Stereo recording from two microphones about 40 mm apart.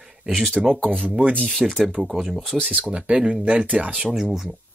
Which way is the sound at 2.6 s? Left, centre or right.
Right.